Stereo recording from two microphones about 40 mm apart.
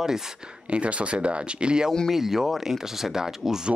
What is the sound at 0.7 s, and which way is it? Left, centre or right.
Speech, right.